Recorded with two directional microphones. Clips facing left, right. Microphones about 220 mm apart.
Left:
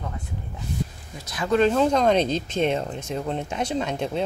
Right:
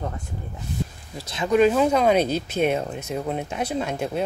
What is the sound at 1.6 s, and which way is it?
Speech, 5° right (ahead or behind).